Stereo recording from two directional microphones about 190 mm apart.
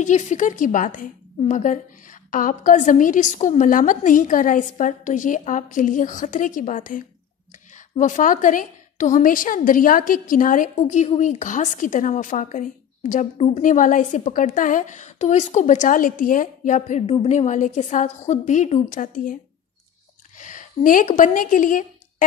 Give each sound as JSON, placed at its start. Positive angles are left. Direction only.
{"t": 0.0, "sound": "a woman's voice", "side_deg": 40}
{"t": 20.3, "sound": "speech", "side_deg": 40}